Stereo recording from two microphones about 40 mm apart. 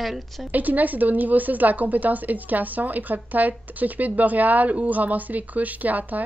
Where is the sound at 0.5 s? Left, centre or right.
Right.